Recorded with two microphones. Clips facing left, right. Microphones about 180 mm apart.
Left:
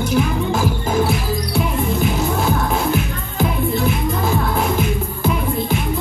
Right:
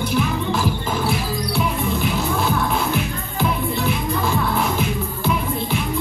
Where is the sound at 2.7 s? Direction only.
45° left (ahead or behind).